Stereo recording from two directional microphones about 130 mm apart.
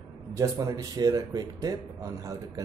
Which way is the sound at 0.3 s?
25° right (ahead or behind).